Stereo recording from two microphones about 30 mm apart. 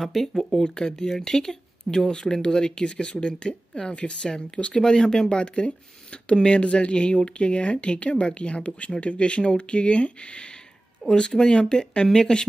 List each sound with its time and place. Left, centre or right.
0.0 s speech: centre
0.6 s speech: left
4.7 s speech: left
6.4 s speech: left
11.1 s speech: left